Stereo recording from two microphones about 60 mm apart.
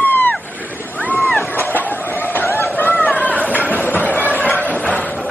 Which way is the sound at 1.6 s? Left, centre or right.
Left.